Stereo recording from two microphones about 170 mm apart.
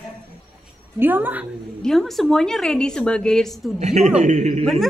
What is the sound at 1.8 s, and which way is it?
A woman's voice, centre (ahead or behind).